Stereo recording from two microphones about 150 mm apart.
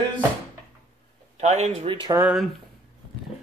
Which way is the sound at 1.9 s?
35° right (ahead or behind).